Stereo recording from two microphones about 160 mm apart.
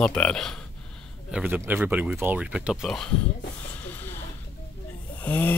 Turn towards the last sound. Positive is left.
turn(degrees=10)  # may be behind; listen again after turning